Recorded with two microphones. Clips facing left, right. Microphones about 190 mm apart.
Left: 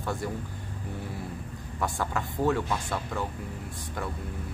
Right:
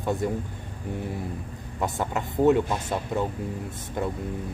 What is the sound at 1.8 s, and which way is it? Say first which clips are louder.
A man's voice: right 3 dB; 20° right (ahead or behind).